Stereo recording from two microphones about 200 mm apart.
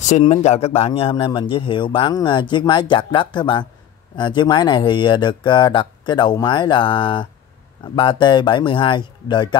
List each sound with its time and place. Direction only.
0.0 s a man's voice: 35° left (ahead or behind)